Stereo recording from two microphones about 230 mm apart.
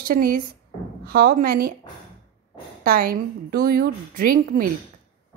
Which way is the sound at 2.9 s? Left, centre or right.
Right.